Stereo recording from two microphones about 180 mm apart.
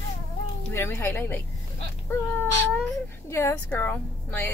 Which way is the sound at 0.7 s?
15° left (ahead or behind).